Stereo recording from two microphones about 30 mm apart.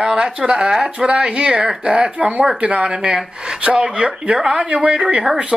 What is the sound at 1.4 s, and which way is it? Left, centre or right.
A man's voice, right.